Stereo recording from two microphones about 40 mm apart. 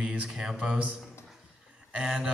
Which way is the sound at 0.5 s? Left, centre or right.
Right.